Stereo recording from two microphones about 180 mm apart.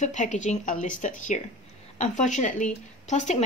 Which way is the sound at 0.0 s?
40° left (ahead or behind).